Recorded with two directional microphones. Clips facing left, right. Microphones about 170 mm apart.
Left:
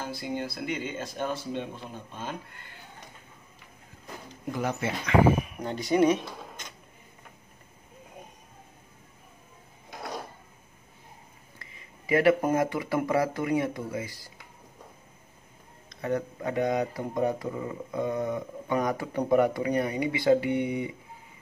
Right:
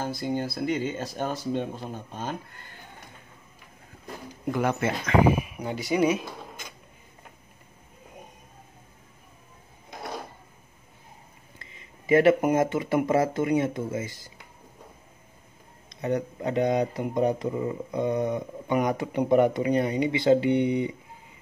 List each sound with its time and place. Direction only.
0.0 s speech: 40° right (ahead or behind)
4.5 s speech: 60° right (ahead or behind)
5.2 s speech: 5° right (ahead or behind)
11.5 s speech: 25° right (ahead or behind)
15.9 s speech: 20° right (ahead or behind)